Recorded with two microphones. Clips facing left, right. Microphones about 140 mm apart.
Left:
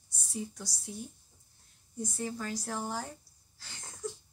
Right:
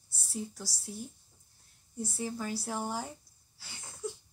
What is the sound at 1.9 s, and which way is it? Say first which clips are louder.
Speech: even; 5° right (ahead or behind).